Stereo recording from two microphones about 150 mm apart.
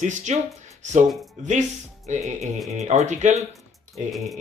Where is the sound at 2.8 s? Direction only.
50° right (ahead or behind).